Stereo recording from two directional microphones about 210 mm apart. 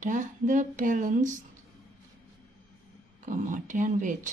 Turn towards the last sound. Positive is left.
turn(degrees=-35)  # may be behind; listen again after turning